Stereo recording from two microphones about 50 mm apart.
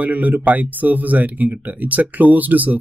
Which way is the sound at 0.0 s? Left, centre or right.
Right.